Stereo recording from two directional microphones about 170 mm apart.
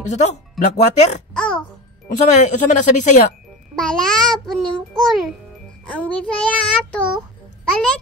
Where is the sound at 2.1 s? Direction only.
45° left (ahead or behind).